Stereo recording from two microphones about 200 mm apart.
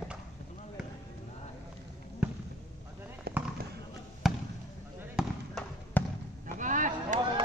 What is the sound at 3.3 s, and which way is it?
Fireworks, 50° right (ahead or behind).